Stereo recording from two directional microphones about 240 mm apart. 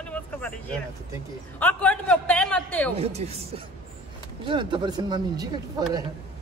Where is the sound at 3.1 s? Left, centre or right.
Right.